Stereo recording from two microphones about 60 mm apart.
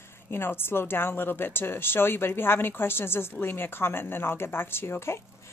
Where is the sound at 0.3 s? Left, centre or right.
Left.